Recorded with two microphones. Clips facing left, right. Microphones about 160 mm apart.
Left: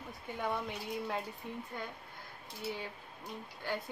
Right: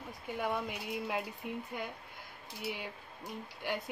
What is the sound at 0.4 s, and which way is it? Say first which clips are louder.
Speech: right 1 dB; 10° right (ahead or behind).